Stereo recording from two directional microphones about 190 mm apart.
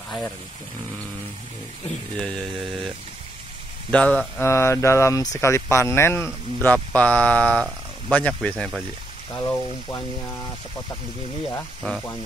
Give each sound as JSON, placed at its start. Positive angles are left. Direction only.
{"t": 2.1, "sound": "mantra", "side_deg": 5}
{"t": 3.9, "sound": "speech", "side_deg": 5}
{"t": 8.1, "sound": "mantra", "side_deg": 5}
{"t": 9.4, "sound": "speech", "side_deg": 10}
{"t": 11.5, "sound": "mantra", "side_deg": 0}